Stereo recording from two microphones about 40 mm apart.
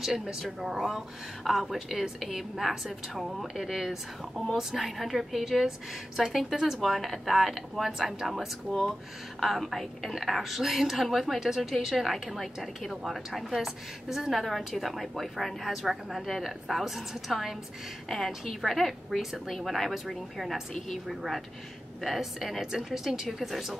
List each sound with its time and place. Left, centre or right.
0.0 s a woman's voice: centre
6.8 s a woman's voice: centre